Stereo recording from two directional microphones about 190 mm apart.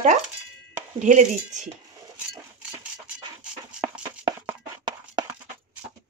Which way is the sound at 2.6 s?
5° right (ahead or behind).